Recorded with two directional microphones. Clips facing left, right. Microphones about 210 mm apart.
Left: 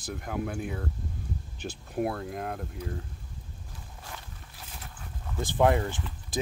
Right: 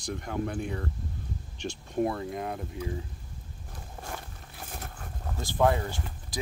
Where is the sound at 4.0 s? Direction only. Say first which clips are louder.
Right 6 dB; 50° right (ahead or behind).